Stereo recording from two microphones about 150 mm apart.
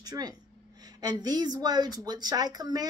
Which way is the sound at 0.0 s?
25° right (ahead or behind).